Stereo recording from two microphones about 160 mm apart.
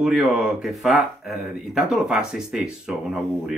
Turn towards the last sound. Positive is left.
turn(degrees=-5)  # may be behind; listen again after turning